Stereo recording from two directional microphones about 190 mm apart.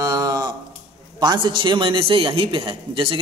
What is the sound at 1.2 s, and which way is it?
A man's voice, 25° right (ahead or behind).